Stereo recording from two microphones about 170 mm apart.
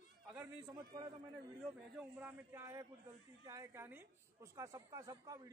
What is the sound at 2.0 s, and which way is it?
A man's voice, 10° right (ahead or behind).